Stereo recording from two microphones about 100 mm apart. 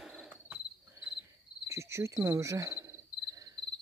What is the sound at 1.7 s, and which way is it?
Cricket, 30° right (ahead or behind).